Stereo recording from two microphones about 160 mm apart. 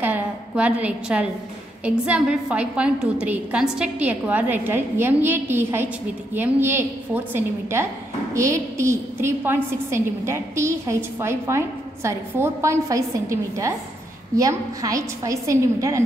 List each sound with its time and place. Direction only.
0.0 s a sound: 10° right (ahead or behind)
1.9 s a woman's voice: 5° right (ahead or behind)
8.4 s a woman's voice: 20° right (ahead or behind)